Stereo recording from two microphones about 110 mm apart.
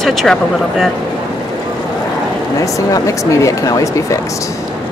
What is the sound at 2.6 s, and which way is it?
Speech, 30° left (ahead or behind).